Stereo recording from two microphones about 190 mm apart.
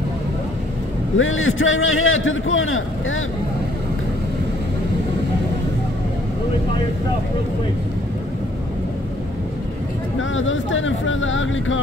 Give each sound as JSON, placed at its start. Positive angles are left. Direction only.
{"t": 1.1, "sound": "a man's voice", "side_deg": 90}
{"t": 10.3, "sound": "a man's voice", "side_deg": 90}